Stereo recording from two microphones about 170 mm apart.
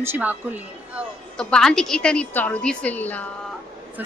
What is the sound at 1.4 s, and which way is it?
A woman's voice, 5° left (ahead or behind).